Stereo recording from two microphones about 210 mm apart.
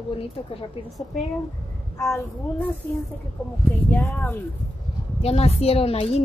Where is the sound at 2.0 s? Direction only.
15° left (ahead or behind).